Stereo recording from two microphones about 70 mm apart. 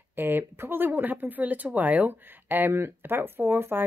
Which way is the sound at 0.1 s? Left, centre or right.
Right.